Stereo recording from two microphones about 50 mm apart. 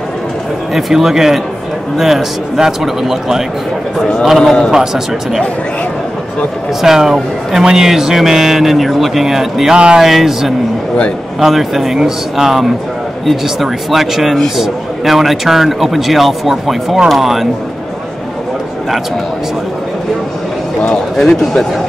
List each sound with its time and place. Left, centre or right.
0.7 s a man's voice: centre
4.4 s speech: centre
4.7 s a man's voice: centre
6.8 s a man's voice: centre
9.8 s speech: centre
10.0 s a man's voice: centre
20.9 s speech: centre